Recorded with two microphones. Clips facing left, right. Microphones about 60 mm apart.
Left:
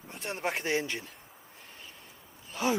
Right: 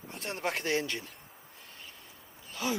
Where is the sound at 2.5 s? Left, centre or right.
Left.